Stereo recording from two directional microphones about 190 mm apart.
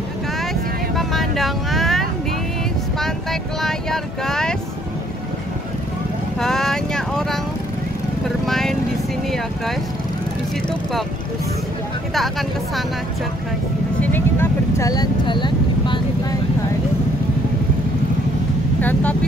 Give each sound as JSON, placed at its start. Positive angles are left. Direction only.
{"t": 0.9, "sound": "vehicle", "side_deg": 0}
{"t": 6.4, "sound": "vehicle", "side_deg": 0}
{"t": 8.5, "sound": "vehicle", "side_deg": 0}
{"t": 12.1, "sound": "speech", "side_deg": 0}
{"t": 14.1, "sound": "vehicle", "side_deg": 15}
{"t": 18.8, "sound": "speech", "side_deg": 10}